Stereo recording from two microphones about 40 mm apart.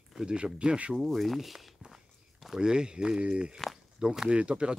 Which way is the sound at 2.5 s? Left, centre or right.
Right.